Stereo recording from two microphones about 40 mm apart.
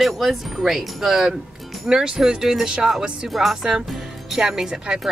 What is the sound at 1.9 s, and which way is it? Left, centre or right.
Speech, centre.